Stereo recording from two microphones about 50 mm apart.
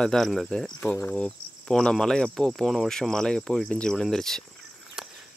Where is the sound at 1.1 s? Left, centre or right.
Left.